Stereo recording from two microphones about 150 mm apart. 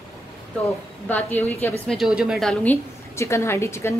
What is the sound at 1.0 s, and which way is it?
Speech, 10° left (ahead or behind).